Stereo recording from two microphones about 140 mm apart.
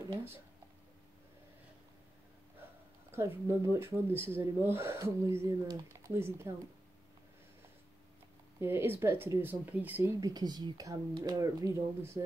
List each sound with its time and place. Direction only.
3.4 s speech: 20° right (ahead or behind)
8.5 s speech: 15° right (ahead or behind)
10.2 s speech: 30° right (ahead or behind)